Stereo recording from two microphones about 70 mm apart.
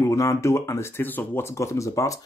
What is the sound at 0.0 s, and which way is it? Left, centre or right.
Speech, left.